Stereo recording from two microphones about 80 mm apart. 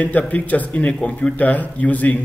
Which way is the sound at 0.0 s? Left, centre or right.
Centre.